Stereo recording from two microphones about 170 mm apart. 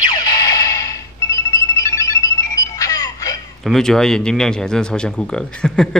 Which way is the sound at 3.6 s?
5° left (ahead or behind).